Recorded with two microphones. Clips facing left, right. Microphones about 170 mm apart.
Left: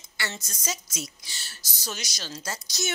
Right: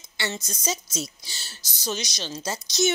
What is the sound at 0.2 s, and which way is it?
A woman's voice, 20° right (ahead or behind).